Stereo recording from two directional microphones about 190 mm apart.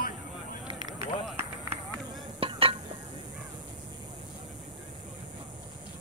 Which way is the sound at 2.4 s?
30° right (ahead or behind).